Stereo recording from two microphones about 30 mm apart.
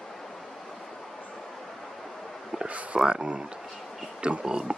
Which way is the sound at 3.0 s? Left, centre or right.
Right.